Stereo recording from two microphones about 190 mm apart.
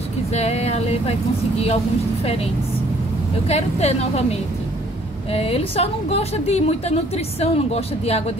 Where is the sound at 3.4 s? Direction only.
35° left (ahead or behind).